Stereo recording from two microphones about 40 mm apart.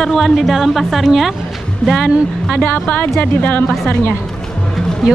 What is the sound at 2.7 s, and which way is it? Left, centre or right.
Speech, left.